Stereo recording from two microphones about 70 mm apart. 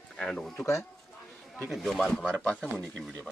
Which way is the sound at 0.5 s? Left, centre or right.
Left.